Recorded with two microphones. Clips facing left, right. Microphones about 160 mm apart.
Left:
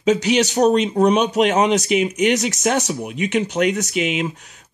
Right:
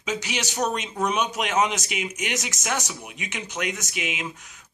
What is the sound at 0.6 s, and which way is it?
Speech, 35° left (ahead or behind).